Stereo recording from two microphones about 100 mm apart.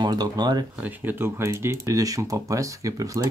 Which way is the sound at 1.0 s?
25° right (ahead or behind).